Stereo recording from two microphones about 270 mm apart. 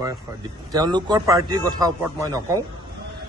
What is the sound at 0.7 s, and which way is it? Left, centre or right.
A man's voice, centre.